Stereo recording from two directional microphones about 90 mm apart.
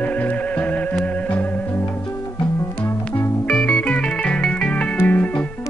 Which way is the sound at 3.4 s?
15° left (ahead or behind).